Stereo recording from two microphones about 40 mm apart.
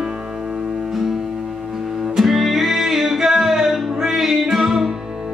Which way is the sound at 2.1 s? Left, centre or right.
Centre.